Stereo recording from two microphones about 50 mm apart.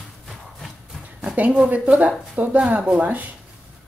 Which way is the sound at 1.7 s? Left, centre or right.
Right.